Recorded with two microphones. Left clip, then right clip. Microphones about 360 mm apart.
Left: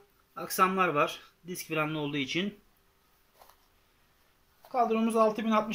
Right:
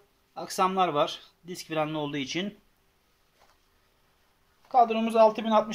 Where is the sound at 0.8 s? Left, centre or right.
Centre.